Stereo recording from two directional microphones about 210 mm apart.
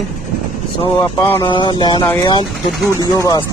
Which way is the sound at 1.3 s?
20° left (ahead or behind).